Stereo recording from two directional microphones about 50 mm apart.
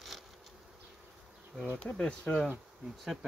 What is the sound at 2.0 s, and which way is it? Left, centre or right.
Speech, centre.